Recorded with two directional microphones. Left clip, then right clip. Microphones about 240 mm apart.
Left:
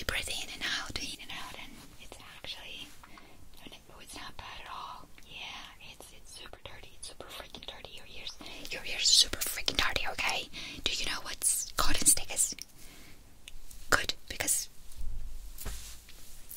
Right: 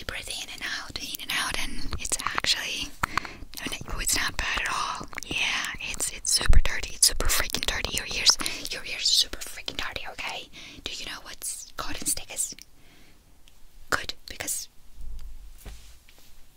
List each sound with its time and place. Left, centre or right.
0.0 s whispering: centre
1.5 s whispering: right
8.6 s whispering: centre
8.9 s whispering: centre
13.8 s whispering: centre